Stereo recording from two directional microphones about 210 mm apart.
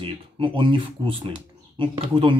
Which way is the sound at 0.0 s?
25° right (ahead or behind).